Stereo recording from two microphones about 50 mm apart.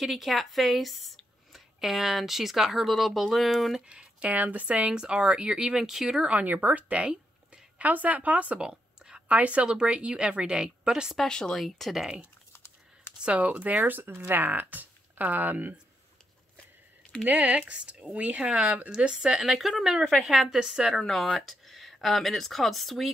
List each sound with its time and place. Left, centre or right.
0.0 s speech: centre
3.8 s speech: centre
6.4 s speech: right
6.9 s a sound: right
7.8 s speech: right
8.6 s a sound: centre
9.3 s speech: right
11.2 s speech: centre
11.5 s speech: centre
12.5 s typing: left
13.2 s speech: right
17.3 s speech: right; by 21.0 s centre
21.4 s speech: centre